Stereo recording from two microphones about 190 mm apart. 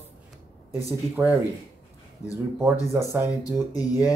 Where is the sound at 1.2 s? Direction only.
10° right (ahead or behind).